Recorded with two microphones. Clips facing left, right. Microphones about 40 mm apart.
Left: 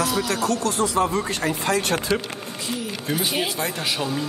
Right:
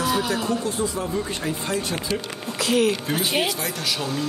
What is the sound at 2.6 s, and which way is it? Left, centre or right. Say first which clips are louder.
Speech: right 11 dB; right.